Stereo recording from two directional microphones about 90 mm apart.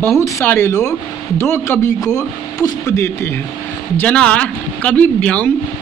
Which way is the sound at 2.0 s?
40° left (ahead or behind).